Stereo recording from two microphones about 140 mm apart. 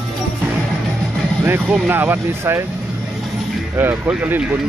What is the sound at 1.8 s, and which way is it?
Speech, 15° right (ahead or behind).